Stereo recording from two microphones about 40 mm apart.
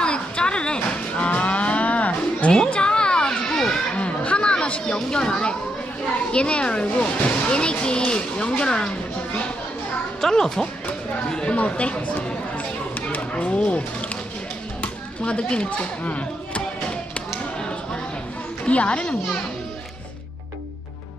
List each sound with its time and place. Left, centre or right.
0.0 s livestock: left
2.7 s a sound: left
3.9 s a sound: left
4.8 s speech: centre
10.2 s speech: centre
11.5 s speech: left
16.0 s speech: left
18.7 s speech: left